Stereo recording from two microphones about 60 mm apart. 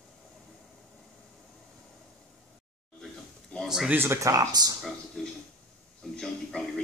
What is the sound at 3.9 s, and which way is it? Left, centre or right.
Speech, right.